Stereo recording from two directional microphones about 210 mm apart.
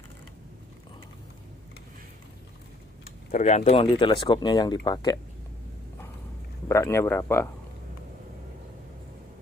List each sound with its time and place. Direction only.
3.3 s speech: 35° left (ahead or behind); by 5.2 s 20° left (ahead or behind)
6.7 s speech: 15° left (ahead or behind)